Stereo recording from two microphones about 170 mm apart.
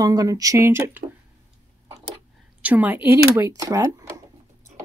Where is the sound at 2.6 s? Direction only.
10° right (ahead or behind).